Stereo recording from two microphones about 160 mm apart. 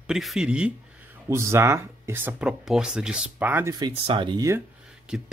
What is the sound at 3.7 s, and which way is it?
Speech, 30° right (ahead or behind).